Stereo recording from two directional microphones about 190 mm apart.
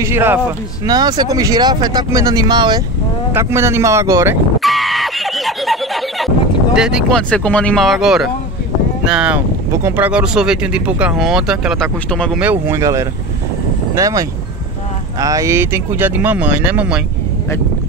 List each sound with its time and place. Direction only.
0.0 s speech: 10° right (ahead or behind)
4.6 s screaming: centre (ahead or behind)
9.0 s speech: 5° right (ahead or behind)
12.4 s speech: 10° right (ahead or behind)